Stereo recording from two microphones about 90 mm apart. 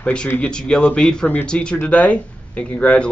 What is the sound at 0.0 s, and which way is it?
Speech, 10° left (ahead or behind).